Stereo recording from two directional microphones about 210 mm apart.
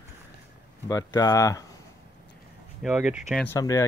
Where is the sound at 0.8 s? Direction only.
15° left (ahead or behind).